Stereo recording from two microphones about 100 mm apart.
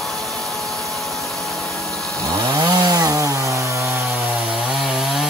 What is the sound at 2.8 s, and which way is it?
Chainsaw, 40° right (ahead or behind).